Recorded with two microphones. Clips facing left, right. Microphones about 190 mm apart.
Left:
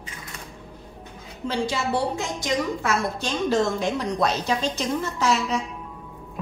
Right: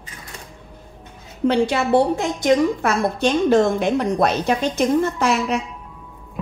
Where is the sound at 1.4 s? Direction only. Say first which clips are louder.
Right 8 dB; 60° right (ahead or behind).